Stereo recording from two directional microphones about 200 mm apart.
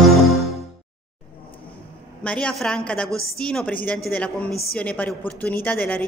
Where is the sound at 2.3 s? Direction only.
5° left (ahead or behind).